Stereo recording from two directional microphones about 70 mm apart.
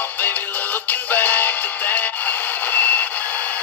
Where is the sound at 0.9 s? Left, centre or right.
Left.